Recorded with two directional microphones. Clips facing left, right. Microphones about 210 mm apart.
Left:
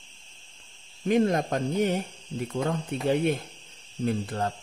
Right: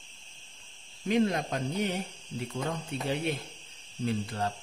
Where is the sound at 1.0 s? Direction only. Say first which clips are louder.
Left 4 dB; 50° left (ahead or behind).